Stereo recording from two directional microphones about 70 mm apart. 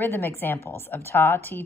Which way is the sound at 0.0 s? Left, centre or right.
Left.